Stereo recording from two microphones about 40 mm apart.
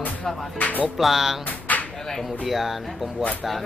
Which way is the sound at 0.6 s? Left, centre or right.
Left.